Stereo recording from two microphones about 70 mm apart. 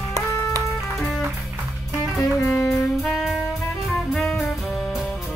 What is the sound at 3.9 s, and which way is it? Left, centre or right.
Jazz, centre.